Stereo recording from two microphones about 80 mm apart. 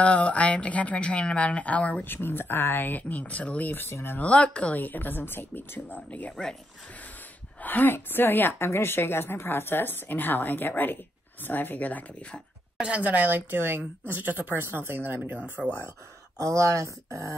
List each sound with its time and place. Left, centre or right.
0.0 s speech: centre
2.2 s a woman's voice: left
4.2 s a woman's voice: centre
7.6 s a woman's voice: left
12.7 s speech: centre
15.6 s speech: centre
16.3 s speech: right